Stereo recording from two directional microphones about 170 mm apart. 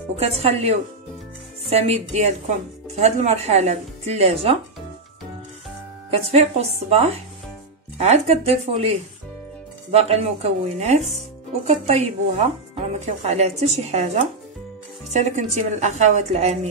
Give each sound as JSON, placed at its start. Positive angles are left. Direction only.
{"t": 0.1, "sound": "speech", "side_deg": -35}
{"t": 6.0, "sound": "speech", "side_deg": -35}
{"t": 8.0, "sound": "a woman's voice", "side_deg": -40}